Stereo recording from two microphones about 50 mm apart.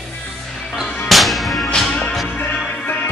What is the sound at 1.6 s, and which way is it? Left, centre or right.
Music, centre.